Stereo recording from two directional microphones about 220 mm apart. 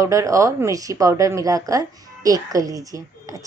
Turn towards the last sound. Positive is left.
turn(degrees=-15)  # may be behind; listen again after turning